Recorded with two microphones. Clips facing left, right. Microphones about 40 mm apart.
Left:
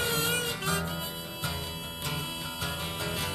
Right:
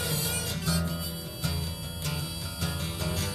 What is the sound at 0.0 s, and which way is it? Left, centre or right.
Music, left.